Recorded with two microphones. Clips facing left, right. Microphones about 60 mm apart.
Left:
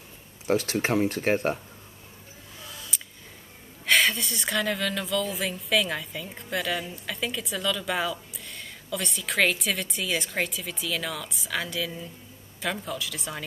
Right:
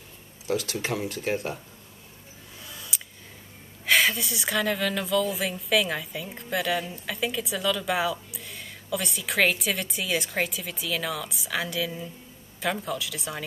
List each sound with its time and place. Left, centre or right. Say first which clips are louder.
0.5 s speech: left 4 dB; left
2.6 s a sound: even; centre
3.8 s speech: even; centre